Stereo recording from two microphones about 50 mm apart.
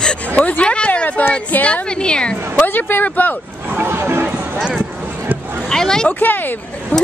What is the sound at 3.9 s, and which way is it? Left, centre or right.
Speech, right.